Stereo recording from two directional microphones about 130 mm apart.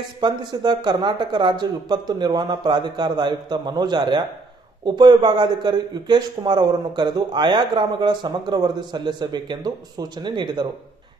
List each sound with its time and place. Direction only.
0.2 s speech: 35° right (ahead or behind)